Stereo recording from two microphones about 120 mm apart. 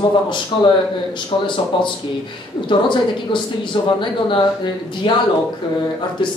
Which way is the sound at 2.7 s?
40° left (ahead or behind).